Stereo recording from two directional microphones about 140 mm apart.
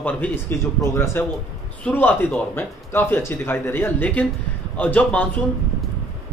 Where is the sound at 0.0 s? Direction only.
10° left (ahead or behind).